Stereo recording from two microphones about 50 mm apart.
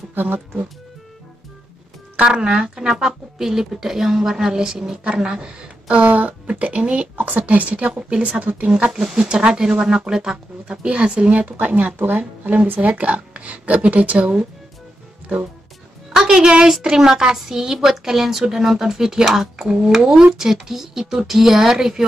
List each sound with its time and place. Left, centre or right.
0.1 s speech: right
2.2 s speech: centre
6.0 s speech: right
8.9 s speech: centre
11.4 s speech: right
16.1 s speech: centre